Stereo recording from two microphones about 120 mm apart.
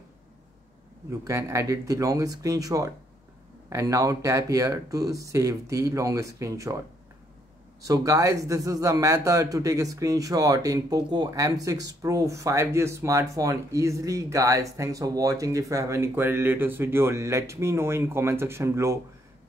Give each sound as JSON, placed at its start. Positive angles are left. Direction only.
{"t": 1.2, "sound": "speech", "side_deg": -25}
{"t": 7.8, "sound": "speech", "side_deg": -30}